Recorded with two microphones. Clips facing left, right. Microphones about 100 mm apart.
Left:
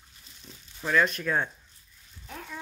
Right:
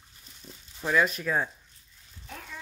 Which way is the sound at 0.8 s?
5° right (ahead or behind).